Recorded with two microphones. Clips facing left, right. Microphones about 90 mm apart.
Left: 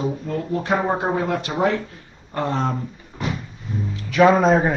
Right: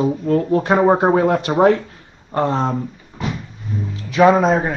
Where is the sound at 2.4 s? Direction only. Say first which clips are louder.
Right 3 dB; 25° right (ahead or behind).